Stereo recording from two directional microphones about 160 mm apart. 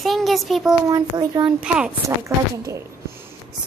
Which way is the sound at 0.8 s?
25° right (ahead or behind).